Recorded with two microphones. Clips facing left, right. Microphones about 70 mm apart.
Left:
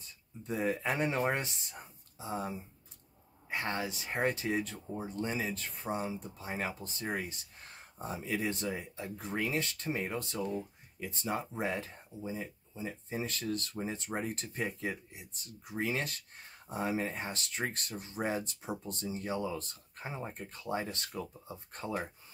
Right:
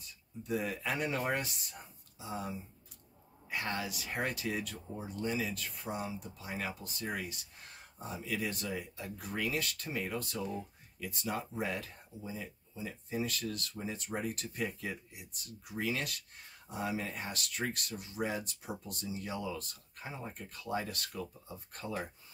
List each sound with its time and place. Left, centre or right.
0.4 s speech: left
8.0 s speech: left
8.3 s speech: left